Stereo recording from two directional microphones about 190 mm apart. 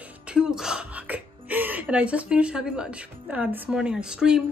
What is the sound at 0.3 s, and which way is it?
Speech, 5° right (ahead or behind).